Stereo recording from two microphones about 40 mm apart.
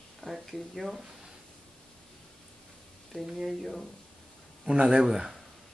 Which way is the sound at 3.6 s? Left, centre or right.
Centre.